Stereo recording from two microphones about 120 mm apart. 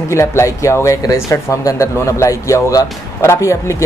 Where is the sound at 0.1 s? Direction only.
25° left (ahead or behind).